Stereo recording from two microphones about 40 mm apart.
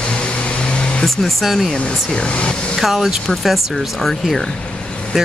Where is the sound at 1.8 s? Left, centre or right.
Left.